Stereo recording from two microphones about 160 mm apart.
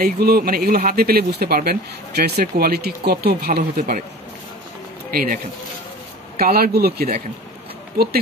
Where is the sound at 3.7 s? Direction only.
55° right (ahead or behind).